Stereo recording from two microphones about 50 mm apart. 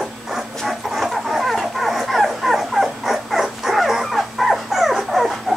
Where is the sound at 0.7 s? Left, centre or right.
Centre.